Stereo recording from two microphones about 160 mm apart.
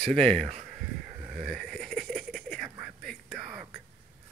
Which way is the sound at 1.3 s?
Centre (ahead or behind).